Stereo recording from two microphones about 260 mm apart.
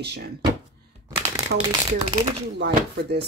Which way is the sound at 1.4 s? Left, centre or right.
Centre.